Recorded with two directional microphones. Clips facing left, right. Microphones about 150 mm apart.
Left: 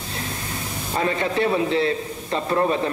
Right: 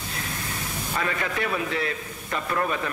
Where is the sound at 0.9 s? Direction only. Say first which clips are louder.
Left 6 dB; 30° left (ahead or behind).